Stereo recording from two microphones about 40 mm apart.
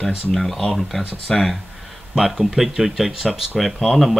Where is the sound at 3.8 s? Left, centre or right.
Centre.